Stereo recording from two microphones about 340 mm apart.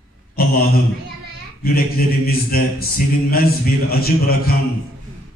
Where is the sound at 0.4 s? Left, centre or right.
Left.